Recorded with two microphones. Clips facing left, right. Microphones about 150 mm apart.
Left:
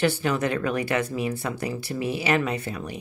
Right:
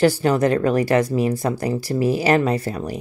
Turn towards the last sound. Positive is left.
turn(degrees=-40)  # may be behind; listen again after turning